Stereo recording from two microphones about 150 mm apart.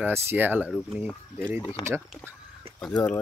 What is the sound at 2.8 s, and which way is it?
Speech, 5° left (ahead or behind).